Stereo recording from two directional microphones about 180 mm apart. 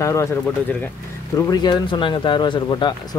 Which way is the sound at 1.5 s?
25° left (ahead or behind).